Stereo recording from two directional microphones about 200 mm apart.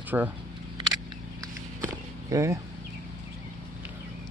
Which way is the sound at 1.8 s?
15° right (ahead or behind).